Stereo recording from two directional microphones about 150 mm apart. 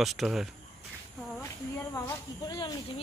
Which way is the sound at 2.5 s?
30° left (ahead or behind).